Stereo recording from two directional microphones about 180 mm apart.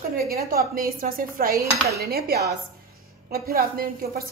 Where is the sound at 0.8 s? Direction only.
50° right (ahead or behind).